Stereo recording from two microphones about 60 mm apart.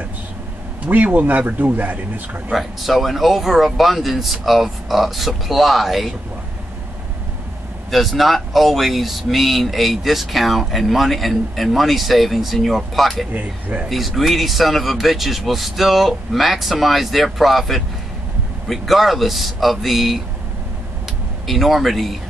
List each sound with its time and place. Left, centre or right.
0.8 s speech: right
2.5 s speech: centre
7.9 s speech: centre
13.3 s speech: right
13.8 s speech: centre
21.5 s speech: centre